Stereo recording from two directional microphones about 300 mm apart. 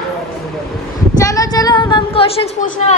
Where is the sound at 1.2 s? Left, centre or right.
Centre.